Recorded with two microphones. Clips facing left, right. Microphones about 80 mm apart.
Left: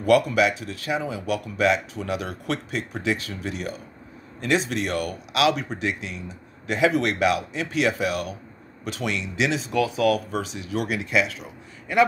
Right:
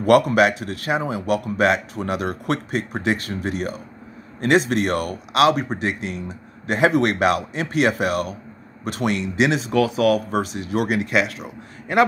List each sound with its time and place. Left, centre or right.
0.0 s a man's voice: right